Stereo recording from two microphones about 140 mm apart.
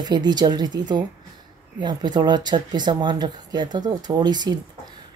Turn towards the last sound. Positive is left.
turn(degrees=-30)  # may be behind; listen again after turning